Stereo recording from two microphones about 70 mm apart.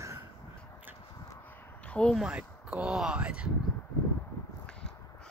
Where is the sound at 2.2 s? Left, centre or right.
Centre.